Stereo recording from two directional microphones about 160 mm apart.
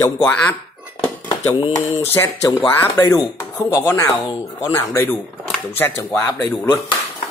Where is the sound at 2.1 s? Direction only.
15° left (ahead or behind).